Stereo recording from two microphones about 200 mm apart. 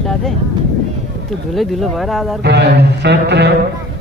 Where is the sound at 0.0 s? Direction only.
Centre (ahead or behind).